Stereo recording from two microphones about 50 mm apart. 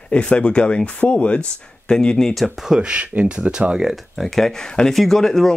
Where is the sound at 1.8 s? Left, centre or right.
Centre.